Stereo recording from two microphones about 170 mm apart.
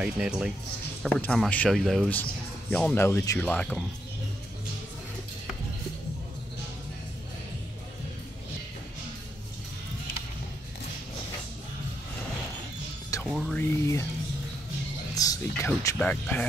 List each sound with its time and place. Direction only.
0.0 s speech: 5° right (ahead or behind)
1.2 s speech: 5° left (ahead or behind)
13.1 s music: 20° left (ahead or behind)
13.5 s speech: 15° left (ahead or behind)
15.1 s speech: 20° left (ahead or behind)
16.0 s speech: 10° left (ahead or behind)